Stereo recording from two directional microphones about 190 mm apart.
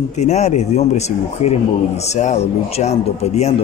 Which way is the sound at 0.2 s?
35° left (ahead or behind).